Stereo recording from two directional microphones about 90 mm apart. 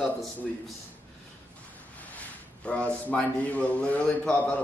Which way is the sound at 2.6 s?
15° left (ahead or behind).